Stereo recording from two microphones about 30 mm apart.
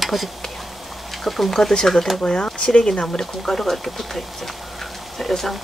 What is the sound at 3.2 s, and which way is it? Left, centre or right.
Speech, centre.